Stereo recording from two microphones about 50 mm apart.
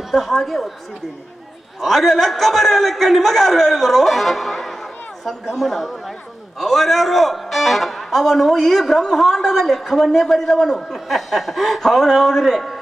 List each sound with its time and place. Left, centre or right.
0.1 s a man's voice: centre
1.8 s a man's voice: centre
11.1 s a man's voice: centre